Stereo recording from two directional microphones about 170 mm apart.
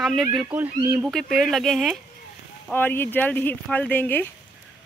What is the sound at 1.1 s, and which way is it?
Speech, 5° left (ahead or behind).